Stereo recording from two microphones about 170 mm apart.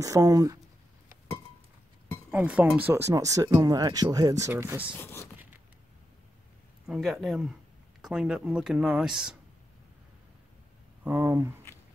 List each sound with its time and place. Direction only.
0.0 s speech: 20° right (ahead or behind)
2.3 s speech: 10° right (ahead or behind)
4.9 s speech: 15° left (ahead or behind)
6.9 s speech: centre (ahead or behind)
11.1 s speech: 10° right (ahead or behind)